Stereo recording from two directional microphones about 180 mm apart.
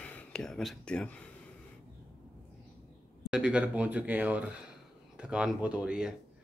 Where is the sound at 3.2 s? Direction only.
5° right (ahead or behind).